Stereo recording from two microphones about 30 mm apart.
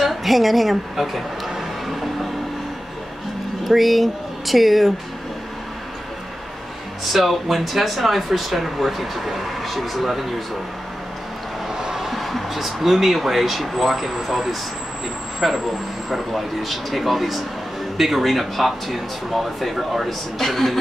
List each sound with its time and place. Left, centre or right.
0.0 s a woman's voice: centre
3.6 s speech: centre
7.1 s speech: centre
11.7 s music: right
12.2 s speech: centre